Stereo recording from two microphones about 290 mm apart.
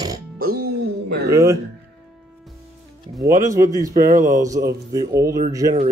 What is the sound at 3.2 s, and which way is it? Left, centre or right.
Speech, centre.